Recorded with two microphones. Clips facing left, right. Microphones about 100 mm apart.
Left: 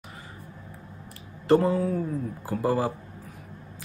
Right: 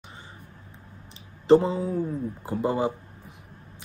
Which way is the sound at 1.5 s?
25° right (ahead or behind).